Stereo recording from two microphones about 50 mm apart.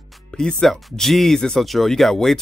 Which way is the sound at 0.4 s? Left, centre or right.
Centre.